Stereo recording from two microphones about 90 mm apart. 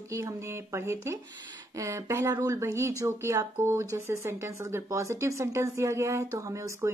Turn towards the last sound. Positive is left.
turn(degrees=-35)  # may be behind; listen again after turning